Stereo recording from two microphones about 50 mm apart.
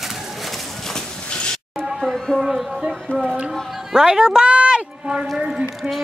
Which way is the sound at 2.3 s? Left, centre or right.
Centre.